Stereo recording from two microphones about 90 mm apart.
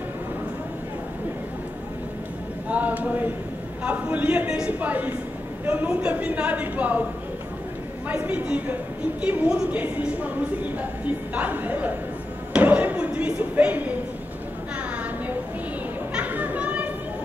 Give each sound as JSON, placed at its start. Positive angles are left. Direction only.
{"t": 2.7, "sound": "a woman's voice", "side_deg": -15}
{"t": 8.1, "sound": "a woman's voice", "side_deg": -15}
{"t": 12.5, "sound": "a sound", "side_deg": -15}
{"t": 16.1, "sound": "children playing", "side_deg": -15}